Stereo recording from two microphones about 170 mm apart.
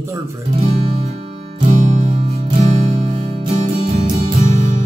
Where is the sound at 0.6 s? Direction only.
40° right (ahead or behind).